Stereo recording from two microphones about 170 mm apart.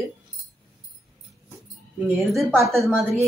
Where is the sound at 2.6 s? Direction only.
15° right (ahead or behind).